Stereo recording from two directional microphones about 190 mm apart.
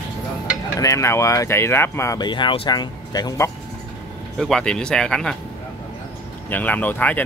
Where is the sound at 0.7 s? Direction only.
15° left (ahead or behind).